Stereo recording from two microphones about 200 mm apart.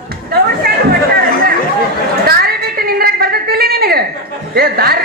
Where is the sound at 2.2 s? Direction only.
50° right (ahead or behind).